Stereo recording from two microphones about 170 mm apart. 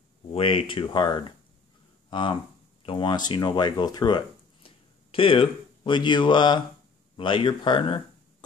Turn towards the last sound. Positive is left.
turn(degrees=30)  # may be behind; listen again after turning